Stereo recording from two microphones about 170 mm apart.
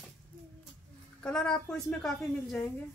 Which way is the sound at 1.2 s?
5° left (ahead or behind).